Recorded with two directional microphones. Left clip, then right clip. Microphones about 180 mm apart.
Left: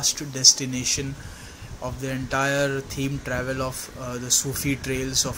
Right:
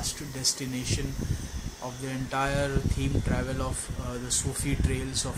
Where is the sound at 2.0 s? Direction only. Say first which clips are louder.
Left 5 dB; 10° left (ahead or behind).